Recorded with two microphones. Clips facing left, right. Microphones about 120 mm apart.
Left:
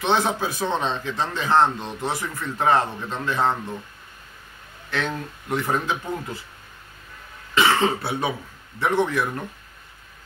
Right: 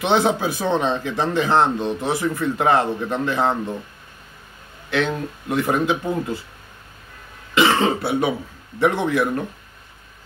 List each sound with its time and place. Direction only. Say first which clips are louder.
0.0 s speech: right 4 dB; 15° right (ahead or behind)
4.9 s speech: right 5 dB; 15° right (ahead or behind)
7.5 s cough: right 3 dB; 10° right (ahead or behind)
8.7 s speech: right 3 dB; 15° right (ahead or behind)